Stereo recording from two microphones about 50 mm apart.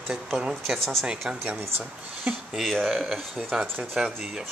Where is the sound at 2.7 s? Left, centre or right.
Centre.